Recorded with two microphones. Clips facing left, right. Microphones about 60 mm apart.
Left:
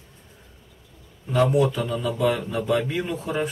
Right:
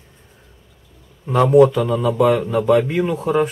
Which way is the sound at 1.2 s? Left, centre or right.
Right.